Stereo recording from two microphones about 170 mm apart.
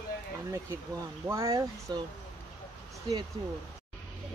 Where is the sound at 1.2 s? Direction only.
15° right (ahead or behind).